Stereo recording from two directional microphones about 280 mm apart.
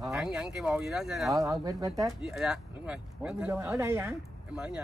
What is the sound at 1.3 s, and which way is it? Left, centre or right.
Speech, centre.